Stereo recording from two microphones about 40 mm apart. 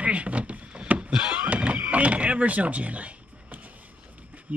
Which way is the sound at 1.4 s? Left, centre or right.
Right.